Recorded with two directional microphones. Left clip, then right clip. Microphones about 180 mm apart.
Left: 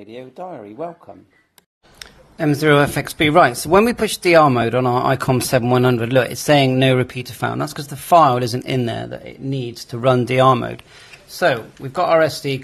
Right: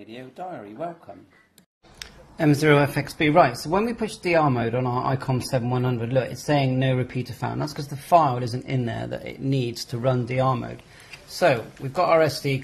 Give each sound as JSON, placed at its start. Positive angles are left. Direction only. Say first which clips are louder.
{"t": 0.1, "sound": "speech", "louder": "left 4 dB", "side_deg": 0}
{"t": 2.0, "sound": "a sound", "louder": "left 2 dB", "side_deg": 15}
{"t": 2.7, "sound": "speech", "louder": "left 5 dB", "side_deg": 35}
{"t": 9.0, "sound": "speech", "louder": "left 1 dB", "side_deg": 15}
{"t": 9.9, "sound": "speech", "louder": "left 9 dB", "side_deg": 35}
{"t": 11.3, "sound": "speech", "louder": "left 3 dB", "side_deg": 25}